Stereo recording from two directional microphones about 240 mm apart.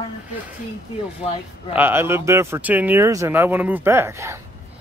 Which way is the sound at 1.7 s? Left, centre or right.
Centre.